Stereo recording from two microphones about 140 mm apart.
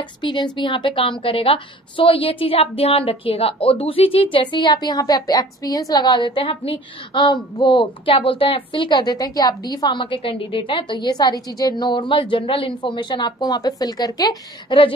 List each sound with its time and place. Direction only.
0.2 s a woman's voice: 35° left (ahead or behind)